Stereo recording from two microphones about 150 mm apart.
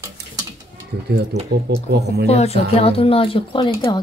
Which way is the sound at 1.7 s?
90° right.